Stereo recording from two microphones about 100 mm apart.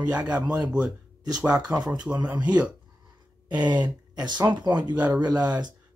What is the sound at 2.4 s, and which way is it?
Speech, 10° right (ahead or behind).